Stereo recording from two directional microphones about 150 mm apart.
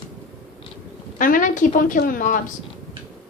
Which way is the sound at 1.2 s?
65° left (ahead or behind).